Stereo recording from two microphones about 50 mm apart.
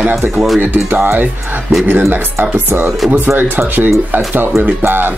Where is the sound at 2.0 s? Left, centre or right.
Right.